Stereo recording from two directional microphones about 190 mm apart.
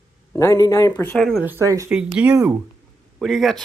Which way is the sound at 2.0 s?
5° right (ahead or behind).